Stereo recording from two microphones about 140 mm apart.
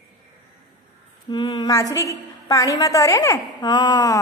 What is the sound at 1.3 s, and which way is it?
A woman's voice, 30° left (ahead or behind).